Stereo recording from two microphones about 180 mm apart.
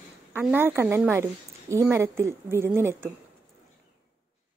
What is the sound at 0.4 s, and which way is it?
Speech, 10° right (ahead or behind).